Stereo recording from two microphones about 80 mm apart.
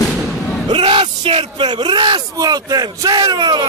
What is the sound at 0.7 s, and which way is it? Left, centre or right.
Bellow, right.